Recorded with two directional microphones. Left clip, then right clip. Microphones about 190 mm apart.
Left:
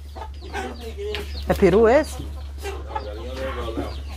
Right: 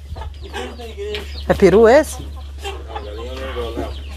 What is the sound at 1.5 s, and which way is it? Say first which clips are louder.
Speech: right 5 dB; 20° right (ahead or behind).